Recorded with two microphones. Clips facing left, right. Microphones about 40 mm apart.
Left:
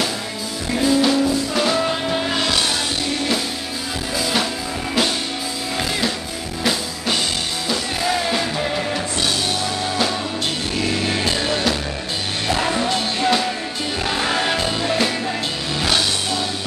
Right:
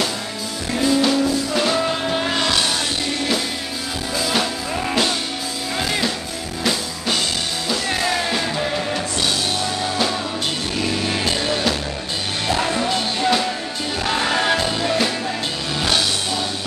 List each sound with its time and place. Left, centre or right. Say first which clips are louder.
0.7 s music: left 1 dB; centre
5.8 s music: right 1 dB; centre
8.3 s music: even; centre
11.1 s music: even; centre